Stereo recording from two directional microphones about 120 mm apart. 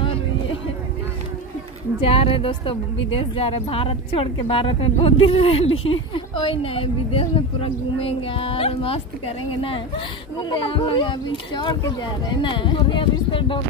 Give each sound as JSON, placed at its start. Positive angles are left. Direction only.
{"t": 2.0, "sound": "a woman's voice", "side_deg": 50}